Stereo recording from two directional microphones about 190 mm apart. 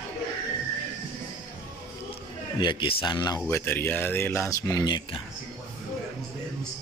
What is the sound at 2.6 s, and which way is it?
Speech, 25° left (ahead or behind).